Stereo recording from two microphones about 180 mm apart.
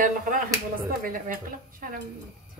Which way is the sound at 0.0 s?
50° right (ahead or behind).